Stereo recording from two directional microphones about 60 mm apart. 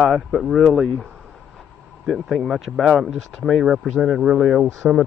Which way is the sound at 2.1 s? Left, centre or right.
Centre.